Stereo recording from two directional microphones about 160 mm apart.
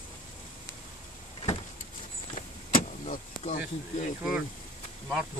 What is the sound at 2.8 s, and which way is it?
Speech, 50° left (ahead or behind).